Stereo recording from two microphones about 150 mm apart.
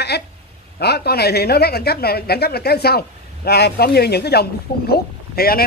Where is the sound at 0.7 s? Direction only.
90° left.